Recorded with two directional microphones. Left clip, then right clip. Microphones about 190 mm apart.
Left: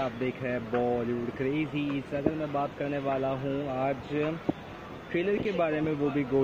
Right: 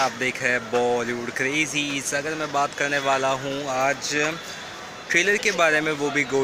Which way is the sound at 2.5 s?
50° right (ahead or behind).